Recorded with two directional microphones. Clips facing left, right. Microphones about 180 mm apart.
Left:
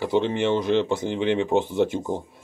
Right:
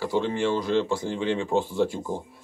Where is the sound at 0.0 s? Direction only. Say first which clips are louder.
Left 3 dB; 20° left (ahead or behind).